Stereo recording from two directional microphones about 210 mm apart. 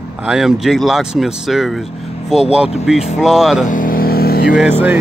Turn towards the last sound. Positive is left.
turn(degrees=-10)  # may be behind; listen again after turning